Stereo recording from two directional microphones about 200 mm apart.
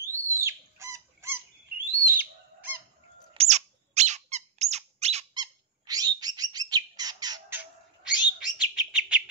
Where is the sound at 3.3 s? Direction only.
35° right (ahead or behind).